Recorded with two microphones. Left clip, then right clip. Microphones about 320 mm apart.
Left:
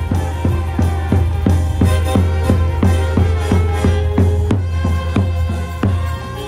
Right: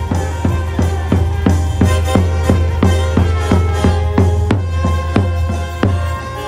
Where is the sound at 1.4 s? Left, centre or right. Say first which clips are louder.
Right 3 dB; right.